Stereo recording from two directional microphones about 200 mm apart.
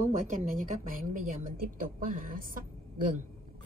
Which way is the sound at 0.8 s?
40° right (ahead or behind).